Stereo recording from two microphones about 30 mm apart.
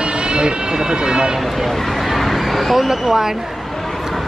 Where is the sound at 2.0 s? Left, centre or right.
Centre.